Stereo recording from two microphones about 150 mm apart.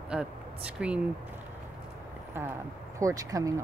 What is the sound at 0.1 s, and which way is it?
Speech, 5° right (ahead or behind).